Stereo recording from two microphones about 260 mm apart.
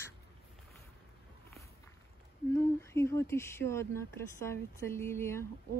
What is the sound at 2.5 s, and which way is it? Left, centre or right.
Speech, centre.